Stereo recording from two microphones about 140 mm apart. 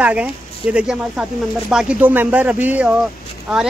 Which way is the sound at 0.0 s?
10° right (ahead or behind).